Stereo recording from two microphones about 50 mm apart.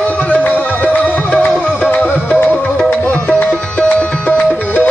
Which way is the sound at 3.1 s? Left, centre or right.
Left.